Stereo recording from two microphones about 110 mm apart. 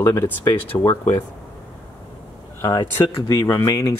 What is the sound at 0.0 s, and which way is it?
Speech, 25° left (ahead or behind).